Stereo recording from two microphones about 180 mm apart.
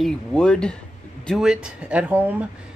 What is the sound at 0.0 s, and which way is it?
Speech, 5° left (ahead or behind).